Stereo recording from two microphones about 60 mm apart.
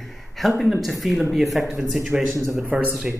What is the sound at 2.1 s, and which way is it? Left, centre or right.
Speech, centre.